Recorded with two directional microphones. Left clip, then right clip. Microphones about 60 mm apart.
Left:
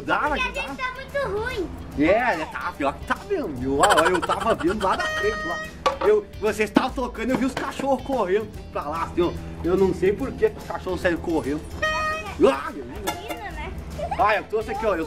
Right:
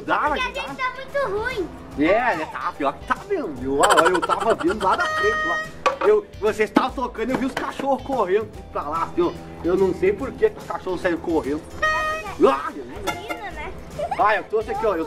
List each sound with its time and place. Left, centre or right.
0.0 s a child's voice: centre
0.3 s speech: centre
2.0 s speech: centre
2.8 s speech: left
3.8 s speech: centre
5.9 s speech: centre
8.7 s speech: left
11.2 s speech: centre
12.1 s music: centre
14.2 s speech: left